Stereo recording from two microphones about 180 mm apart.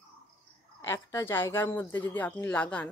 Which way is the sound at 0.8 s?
15° left (ahead or behind).